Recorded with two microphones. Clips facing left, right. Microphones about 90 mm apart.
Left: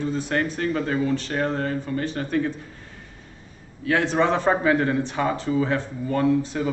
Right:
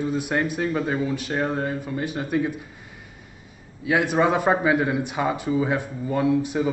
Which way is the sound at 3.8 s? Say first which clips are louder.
Right 1 dB; 10° right (ahead or behind).